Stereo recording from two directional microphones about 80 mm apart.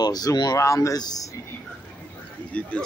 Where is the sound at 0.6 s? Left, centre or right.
Left.